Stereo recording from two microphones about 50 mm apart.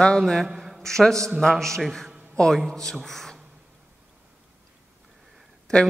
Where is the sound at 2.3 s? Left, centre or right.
Centre.